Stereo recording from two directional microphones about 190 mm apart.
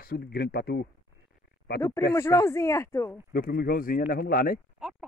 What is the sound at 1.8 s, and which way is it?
Speech, 15° left (ahead or behind).